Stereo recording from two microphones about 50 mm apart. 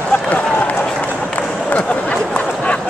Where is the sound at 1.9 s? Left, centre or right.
Left.